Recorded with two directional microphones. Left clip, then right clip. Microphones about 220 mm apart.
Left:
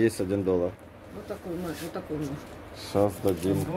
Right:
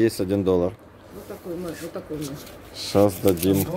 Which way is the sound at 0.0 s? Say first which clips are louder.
Right 4 dB; 30° right (ahead or behind).